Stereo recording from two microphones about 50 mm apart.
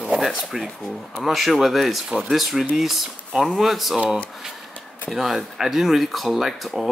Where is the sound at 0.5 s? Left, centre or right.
Centre.